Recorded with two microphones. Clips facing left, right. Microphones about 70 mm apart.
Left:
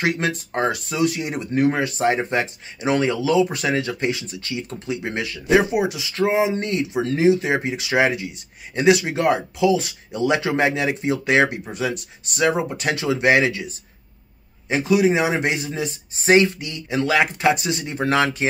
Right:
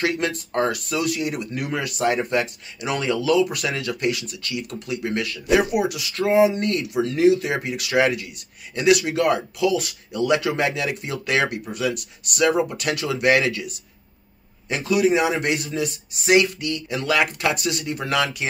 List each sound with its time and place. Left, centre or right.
0.0 s speech: centre